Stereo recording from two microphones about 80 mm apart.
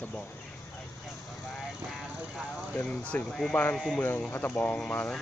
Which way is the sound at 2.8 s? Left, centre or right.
Centre.